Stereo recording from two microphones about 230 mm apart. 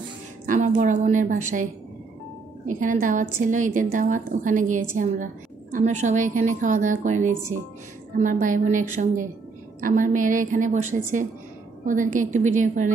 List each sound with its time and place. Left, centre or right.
0.5 s a woman's voice: right
2.8 s a woman's voice: right